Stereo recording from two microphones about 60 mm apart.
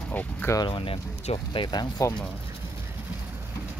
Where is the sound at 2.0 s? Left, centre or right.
Left.